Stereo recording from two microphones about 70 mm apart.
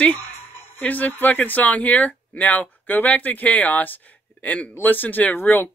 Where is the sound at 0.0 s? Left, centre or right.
Left.